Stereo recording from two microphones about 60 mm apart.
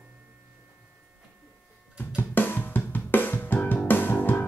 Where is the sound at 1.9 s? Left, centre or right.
Left.